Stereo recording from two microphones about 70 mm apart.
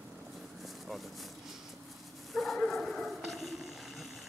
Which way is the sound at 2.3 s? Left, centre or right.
Centre.